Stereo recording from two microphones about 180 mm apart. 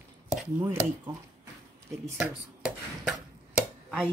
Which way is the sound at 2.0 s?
5° right (ahead or behind).